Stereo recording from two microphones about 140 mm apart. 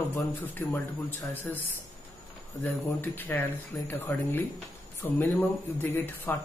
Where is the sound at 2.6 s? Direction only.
15° left (ahead or behind).